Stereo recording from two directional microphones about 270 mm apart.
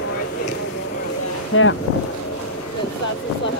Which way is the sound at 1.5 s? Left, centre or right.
Left.